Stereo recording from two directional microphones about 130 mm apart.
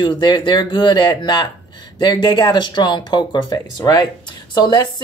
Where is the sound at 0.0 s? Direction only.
35° left (ahead or behind).